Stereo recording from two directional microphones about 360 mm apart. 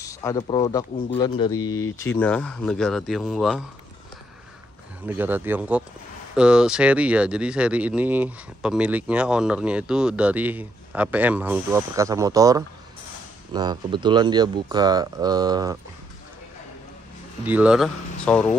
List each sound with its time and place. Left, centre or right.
0.0 s speech: centre
1.6 s speech: left
2.1 s speech: centre
5.0 s speech: centre
17.5 s speech: centre